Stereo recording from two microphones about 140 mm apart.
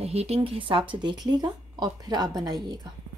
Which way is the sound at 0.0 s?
45° right (ahead or behind).